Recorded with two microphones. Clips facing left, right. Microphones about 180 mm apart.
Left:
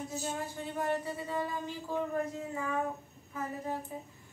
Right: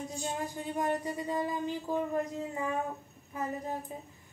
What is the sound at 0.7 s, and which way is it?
Speech, 15° right (ahead or behind).